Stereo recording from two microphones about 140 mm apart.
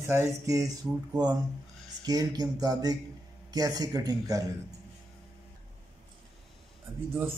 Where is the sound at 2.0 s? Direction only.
25° right (ahead or behind).